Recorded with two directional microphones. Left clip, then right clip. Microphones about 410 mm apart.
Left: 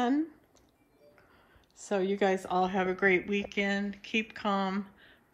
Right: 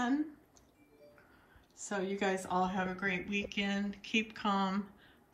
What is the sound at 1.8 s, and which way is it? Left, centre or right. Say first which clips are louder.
Speech: left 7 dB; centre.